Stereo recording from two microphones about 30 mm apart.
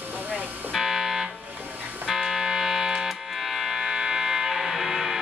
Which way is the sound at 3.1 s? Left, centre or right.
Centre.